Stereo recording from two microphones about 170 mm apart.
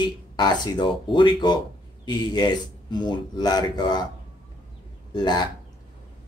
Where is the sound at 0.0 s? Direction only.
25° left (ahead or behind).